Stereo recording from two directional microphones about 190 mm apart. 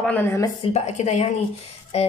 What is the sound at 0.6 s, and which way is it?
Speech, 35° left (ahead or behind).